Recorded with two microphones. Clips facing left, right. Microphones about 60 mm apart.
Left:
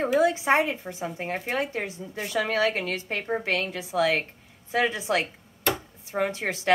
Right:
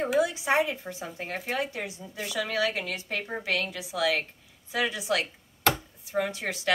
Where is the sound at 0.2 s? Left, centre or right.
Left.